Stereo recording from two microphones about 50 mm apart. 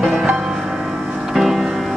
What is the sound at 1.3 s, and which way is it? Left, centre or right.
Music, centre.